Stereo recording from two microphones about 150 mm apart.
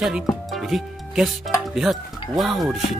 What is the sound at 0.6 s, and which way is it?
Speech, centre (ahead or behind).